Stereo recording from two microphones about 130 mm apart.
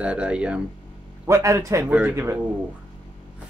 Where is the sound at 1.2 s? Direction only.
25° right (ahead or behind).